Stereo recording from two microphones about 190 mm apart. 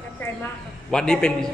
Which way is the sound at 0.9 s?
5° left (ahead or behind).